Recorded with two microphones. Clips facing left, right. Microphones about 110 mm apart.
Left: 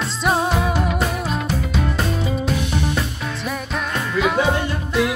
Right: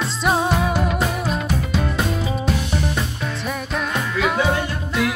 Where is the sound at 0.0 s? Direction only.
Centre (ahead or behind).